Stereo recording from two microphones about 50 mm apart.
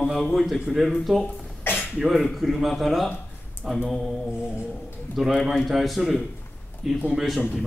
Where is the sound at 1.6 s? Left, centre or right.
Left.